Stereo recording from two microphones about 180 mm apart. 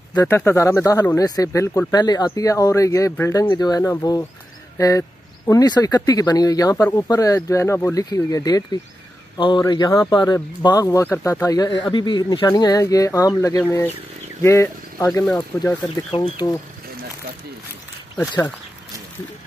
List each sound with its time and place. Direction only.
0.1 s speech: 20° left (ahead or behind)
16.1 s speech: 25° left (ahead or behind)